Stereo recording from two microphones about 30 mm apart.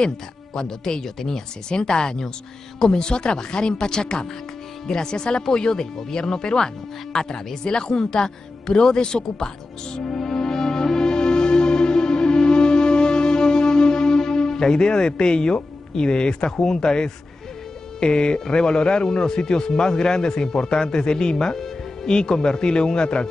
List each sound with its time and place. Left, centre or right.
0.6 s speech: left
10.0 s music: centre
18.0 s speech: left